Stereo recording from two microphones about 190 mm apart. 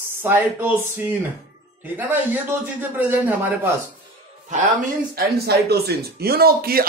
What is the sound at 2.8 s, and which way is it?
Speech, 10° right (ahead or behind).